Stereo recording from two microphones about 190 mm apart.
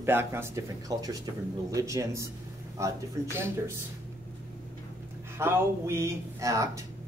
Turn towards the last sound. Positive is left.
turn(degrees=-15)  # may be behind; listen again after turning